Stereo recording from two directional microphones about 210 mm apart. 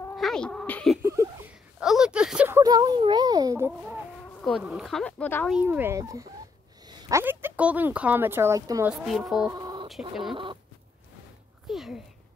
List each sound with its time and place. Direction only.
0.1 s cat: centre (ahead or behind)
1.0 s a sound: 15° right (ahead or behind)
4.4 s speech: centre (ahead or behind)
5.6 s speech: 10° right (ahead or behind)
9.0 s speech: centre (ahead or behind)
9.5 s bird: 20° right (ahead or behind)
9.8 s speech: centre (ahead or behind)
10.3 s a sound: 25° right (ahead or behind)
11.7 s speech: centre (ahead or behind)